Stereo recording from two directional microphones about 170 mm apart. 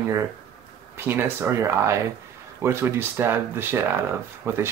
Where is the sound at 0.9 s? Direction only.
10° right (ahead or behind).